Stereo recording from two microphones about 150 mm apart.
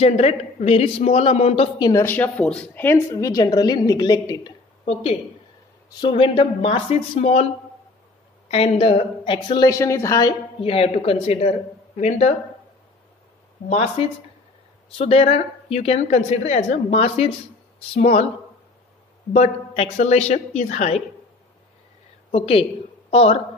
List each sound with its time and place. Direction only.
0.0 s a man's voice: 45° left (ahead or behind)
1.8 s a woman's voice: 25° left (ahead or behind)
2.0 s a woman's voice: 10° left (ahead or behind); by 4.6 s 30° left (ahead or behind)
5.9 s a woman's voice: 35° left (ahead or behind)
10.6 s a woman's voice: 40° left (ahead or behind)
13.7 s a woman's voice: 40° left (ahead or behind)
19.3 s a man's voice: 45° left (ahead or behind)
22.3 s a woman's voice: 40° left (ahead or behind)